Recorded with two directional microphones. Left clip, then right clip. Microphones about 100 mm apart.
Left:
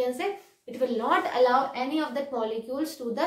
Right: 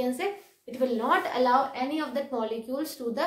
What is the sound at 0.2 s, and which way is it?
A woman's voice, 40° right (ahead or behind).